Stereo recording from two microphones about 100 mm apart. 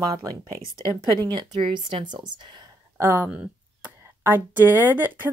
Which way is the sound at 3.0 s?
25° right (ahead or behind).